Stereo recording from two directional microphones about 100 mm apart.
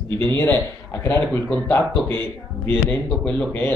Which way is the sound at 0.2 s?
25° left (ahead or behind).